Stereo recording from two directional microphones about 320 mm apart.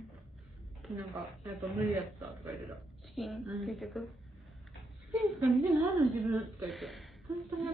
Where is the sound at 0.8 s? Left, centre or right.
Centre.